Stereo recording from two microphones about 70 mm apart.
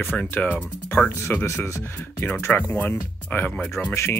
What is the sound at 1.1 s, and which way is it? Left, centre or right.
Speech, left.